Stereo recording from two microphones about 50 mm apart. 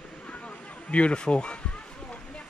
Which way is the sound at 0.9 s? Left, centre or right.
Left.